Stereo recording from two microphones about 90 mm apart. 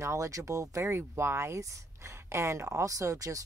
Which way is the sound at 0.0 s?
35° right (ahead or behind).